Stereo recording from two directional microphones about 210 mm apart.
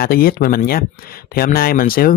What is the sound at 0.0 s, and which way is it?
A man's voice, 45° left (ahead or behind).